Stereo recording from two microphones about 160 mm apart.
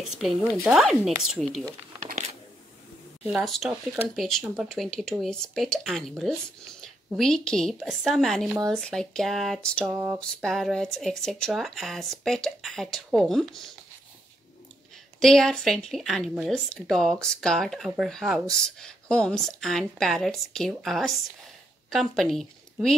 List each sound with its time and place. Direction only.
0.0 s speech: centre (ahead or behind)
3.3 s speech: centre (ahead or behind)
9.8 s speech: 20° right (ahead or behind)
10.4 s speech: centre (ahead or behind)
15.1 s a woman's voice: 5° left (ahead or behind)